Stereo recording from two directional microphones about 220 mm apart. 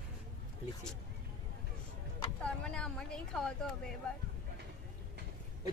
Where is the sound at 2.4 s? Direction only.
5° left (ahead or behind).